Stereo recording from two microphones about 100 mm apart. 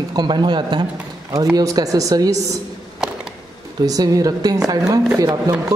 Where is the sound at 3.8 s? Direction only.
35° right (ahead or behind).